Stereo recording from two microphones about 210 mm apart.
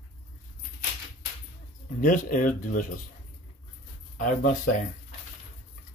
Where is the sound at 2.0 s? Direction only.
40° left (ahead or behind).